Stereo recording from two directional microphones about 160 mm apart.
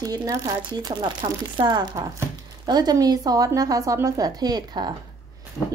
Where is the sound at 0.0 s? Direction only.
25° right (ahead or behind).